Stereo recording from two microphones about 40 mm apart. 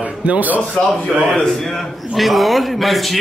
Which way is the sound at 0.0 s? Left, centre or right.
Right.